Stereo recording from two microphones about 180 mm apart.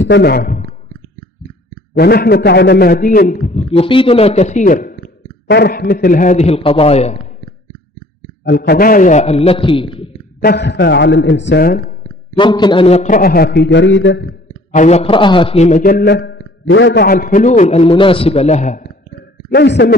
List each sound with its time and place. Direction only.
0.0 s a man's voice: 70° left (ahead or behind); by 0.7 s 50° left (ahead or behind)
2.0 s a man's voice: 60° left (ahead or behind)
5.5 s a man's voice: 60° left (ahead or behind); by 7.2 s 35° left (ahead or behind)
8.5 s a man's voice: 60° left (ahead or behind); by 10.0 s 30° left (ahead or behind)
10.4 s a man's voice: 70° left (ahead or behind); by 11.6 s 85° left
11.6 s a man's voice: 55° left (ahead or behind)
12.4 s a man's voice: 25° left (ahead or behind); by 14.2 s 90° left
14.7 s a man's voice: 40° left (ahead or behind)
19.5 s a man's voice: 70° left (ahead or behind)